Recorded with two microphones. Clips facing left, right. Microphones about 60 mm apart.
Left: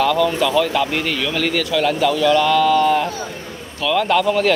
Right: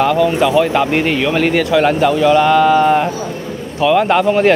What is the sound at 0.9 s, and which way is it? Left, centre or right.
Speech, right.